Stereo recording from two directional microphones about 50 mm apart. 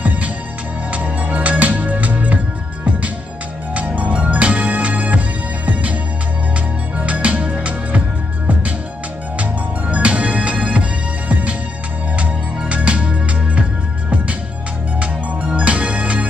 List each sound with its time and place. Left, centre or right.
0.9 s music: right
3.7 s music: right
7.0 s music: right
9.4 s music: right
15.0 s music: right